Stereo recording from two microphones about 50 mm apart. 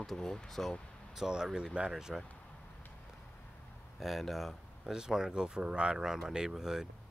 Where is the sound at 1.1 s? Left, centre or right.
Centre.